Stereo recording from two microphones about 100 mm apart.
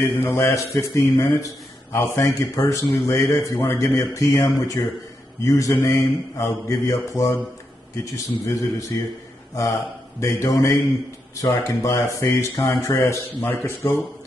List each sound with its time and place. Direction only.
0.0 s a man's voice: 25° left (ahead or behind)